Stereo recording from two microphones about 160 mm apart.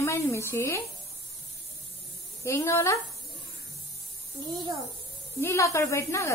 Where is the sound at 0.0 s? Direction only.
15° left (ahead or behind).